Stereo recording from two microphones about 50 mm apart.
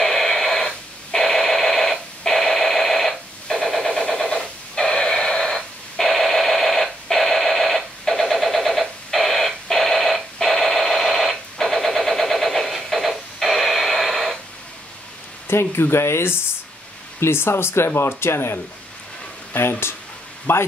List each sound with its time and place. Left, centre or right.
0.0 s radio: centre
15.4 s speech: left
19.6 s speech: left